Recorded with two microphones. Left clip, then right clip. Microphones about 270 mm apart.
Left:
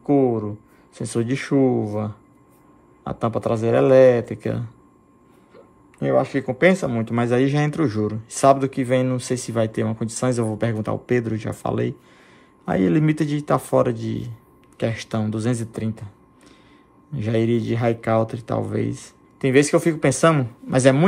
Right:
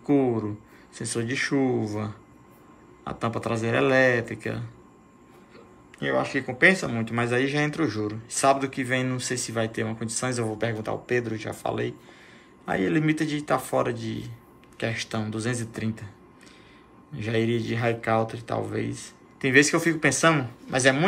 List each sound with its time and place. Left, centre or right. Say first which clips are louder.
0.0 s a sound: left 5 dB; centre
0.9 s speech: left 3 dB; centre
5.9 s speech: left 6 dB; left
17.1 s speech: left 4 dB; left